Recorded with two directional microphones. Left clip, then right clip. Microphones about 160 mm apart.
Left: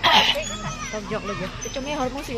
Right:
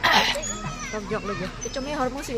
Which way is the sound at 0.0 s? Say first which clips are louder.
Left 3 dB; 10° left (ahead or behind).